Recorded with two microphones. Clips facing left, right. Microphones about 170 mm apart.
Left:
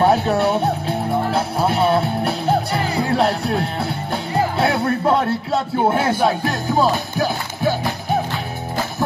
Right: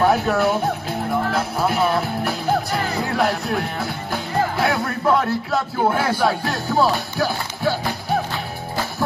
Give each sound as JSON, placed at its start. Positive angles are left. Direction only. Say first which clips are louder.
{"t": 0.0, "sound": "music", "louder": "left 2 dB", "side_deg": 30}